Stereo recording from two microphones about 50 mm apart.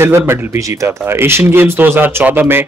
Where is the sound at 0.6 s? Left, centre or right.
Right.